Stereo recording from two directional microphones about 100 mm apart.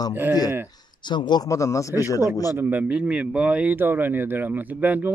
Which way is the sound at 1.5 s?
30° left (ahead or behind).